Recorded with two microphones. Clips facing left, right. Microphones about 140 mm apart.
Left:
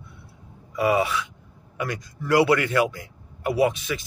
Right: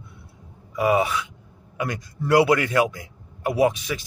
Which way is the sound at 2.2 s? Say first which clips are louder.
Right 1 dB; 20° right (ahead or behind).